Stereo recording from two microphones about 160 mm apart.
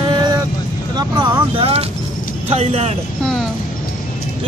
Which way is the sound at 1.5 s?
35° right (ahead or behind).